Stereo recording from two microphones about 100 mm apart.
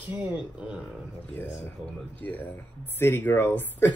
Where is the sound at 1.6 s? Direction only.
15° left (ahead or behind).